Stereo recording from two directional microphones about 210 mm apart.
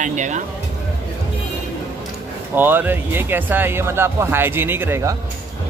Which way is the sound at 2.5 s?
10° right (ahead or behind).